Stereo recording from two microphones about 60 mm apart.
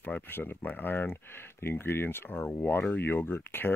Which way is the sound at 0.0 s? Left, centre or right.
Left.